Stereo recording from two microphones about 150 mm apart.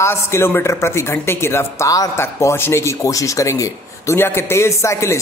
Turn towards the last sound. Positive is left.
turn(degrees=20)  # may be behind; listen again after turning